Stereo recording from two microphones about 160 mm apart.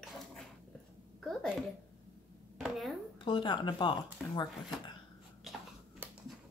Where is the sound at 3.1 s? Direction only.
30° left (ahead or behind).